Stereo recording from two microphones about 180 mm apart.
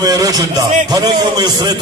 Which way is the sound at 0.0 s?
20° right (ahead or behind).